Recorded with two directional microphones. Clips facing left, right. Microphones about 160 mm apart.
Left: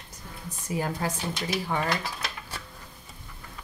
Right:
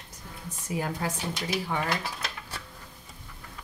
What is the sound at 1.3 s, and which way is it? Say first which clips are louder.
Speech: left 1 dB; 10° right (ahead or behind).